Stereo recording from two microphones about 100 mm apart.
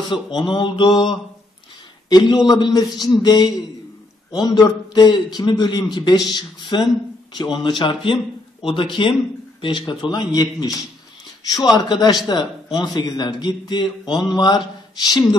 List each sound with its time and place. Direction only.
0.1 s a man's voice: 55° left (ahead or behind)